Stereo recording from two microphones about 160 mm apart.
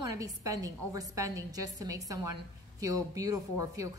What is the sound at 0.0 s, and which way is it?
A woman's voice, 20° right (ahead or behind).